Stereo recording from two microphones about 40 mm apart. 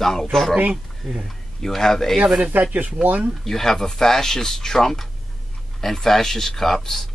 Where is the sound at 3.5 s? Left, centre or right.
Centre.